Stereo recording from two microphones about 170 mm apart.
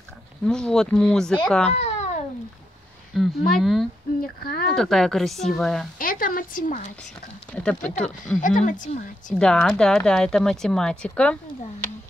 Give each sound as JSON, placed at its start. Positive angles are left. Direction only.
{"t": 0.5, "sound": "a woman's voice", "side_deg": 5}
{"t": 1.7, "sound": "a sound", "side_deg": 40}
{"t": 3.2, "sound": "a woman's voice", "side_deg": 0}
{"t": 4.2, "sound": "speech", "side_deg": 60}
{"t": 4.7, "sound": "a woman's voice", "side_deg": 0}
{"t": 5.9, "sound": "a sound", "side_deg": 55}
{"t": 7.5, "sound": "a woman's voice", "side_deg": 5}
{"t": 8.4, "sound": "speech", "side_deg": 50}
{"t": 9.3, "sound": "a woman's voice", "side_deg": 5}